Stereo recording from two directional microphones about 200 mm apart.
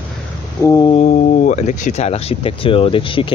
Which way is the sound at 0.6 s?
15° left (ahead or behind).